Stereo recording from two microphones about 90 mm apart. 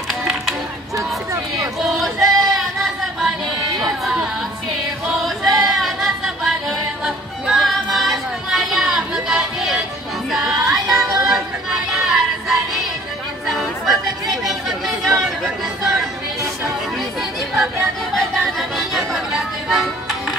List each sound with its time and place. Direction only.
0.1 s music: centre (ahead or behind)
1.8 s female singing: centre (ahead or behind)
2.2 s a sound: centre (ahead or behind)
3.8 s music: 5° right (ahead or behind)
5.2 s a sound: centre (ahead or behind)
5.7 s music: centre (ahead or behind)
11.0 s music: 40° right (ahead or behind)
11.2 s music: 5° right (ahead or behind)
13.5 s chatter: centre (ahead or behind)
17.6 s chatter: centre (ahead or behind)